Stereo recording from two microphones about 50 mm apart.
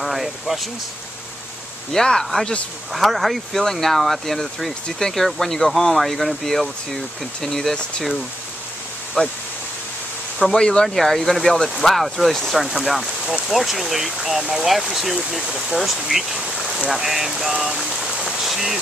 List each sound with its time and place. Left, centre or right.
0.0 s speech: centre
1.9 s speech: centre
2.9 s speech: centre
9.2 s speech: centre
10.4 s speech: centre